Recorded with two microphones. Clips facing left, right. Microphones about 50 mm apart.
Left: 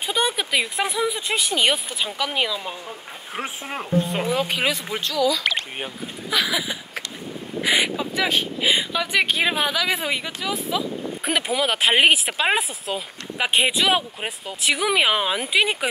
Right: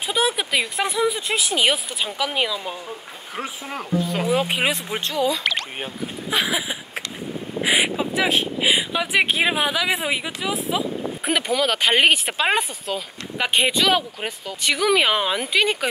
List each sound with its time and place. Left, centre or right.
0.0 s speech: centre
3.7 s speech: left
4.3 s speech: right
5.0 s speech: right
5.4 s speech: centre
6.3 s speech: centre
11.2 s speech: centre